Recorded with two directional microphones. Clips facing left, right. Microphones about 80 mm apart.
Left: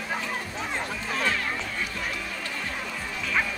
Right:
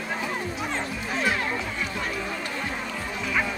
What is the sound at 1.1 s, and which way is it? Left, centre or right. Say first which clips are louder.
Music: right 2 dB; centre.